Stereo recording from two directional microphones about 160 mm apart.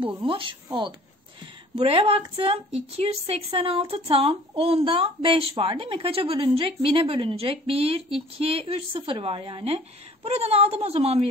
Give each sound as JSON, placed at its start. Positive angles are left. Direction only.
{"t": 0.0, "sound": "speech", "side_deg": -35}
{"t": 1.8, "sound": "speech", "side_deg": -35}